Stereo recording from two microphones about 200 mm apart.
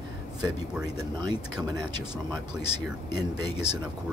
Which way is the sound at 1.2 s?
20° right (ahead or behind).